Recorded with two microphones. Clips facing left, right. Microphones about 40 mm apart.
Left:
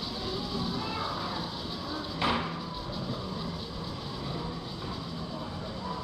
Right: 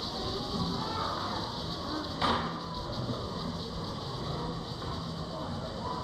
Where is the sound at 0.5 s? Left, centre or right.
Left.